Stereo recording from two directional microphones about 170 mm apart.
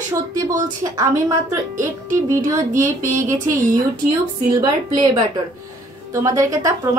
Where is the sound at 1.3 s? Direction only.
15° right (ahead or behind).